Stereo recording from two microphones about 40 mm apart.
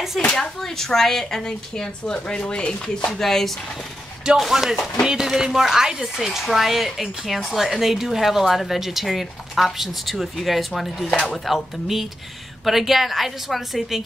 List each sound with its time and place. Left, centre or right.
0.4 s a woman's voice: centre; by 3.1 s left
3.1 s a woman's voice: centre
4.4 s speech: centre